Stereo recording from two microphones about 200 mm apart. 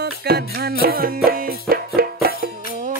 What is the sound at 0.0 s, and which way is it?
Music, 50° right (ahead or behind).